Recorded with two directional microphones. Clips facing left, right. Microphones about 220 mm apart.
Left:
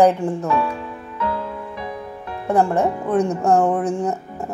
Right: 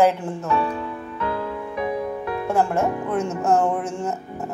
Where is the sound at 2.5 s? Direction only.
15° left (ahead or behind).